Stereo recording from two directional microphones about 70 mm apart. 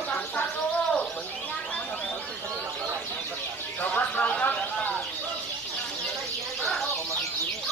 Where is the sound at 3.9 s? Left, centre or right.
Centre.